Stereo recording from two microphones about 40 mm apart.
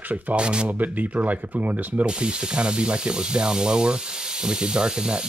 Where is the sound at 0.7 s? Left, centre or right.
Right.